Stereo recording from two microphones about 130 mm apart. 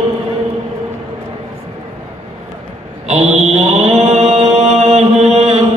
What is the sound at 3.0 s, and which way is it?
Mantra, 55° right (ahead or behind).